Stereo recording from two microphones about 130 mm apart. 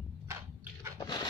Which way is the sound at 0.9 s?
35° left (ahead or behind).